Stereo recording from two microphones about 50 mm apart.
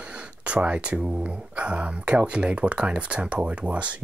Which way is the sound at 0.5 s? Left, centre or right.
Right.